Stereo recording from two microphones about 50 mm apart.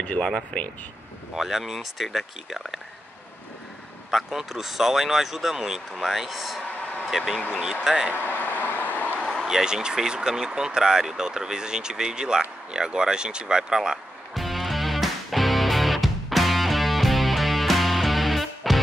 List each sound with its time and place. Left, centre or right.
0.0 s speech: left
1.3 s speech: centre
4.1 s speech: centre
8.2 s vehicle: left
9.2 s a sound: centre
9.5 s speech: centre
14.3 s music: centre